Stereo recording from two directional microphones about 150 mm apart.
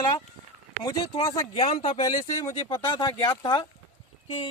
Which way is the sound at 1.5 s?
40° left (ahead or behind).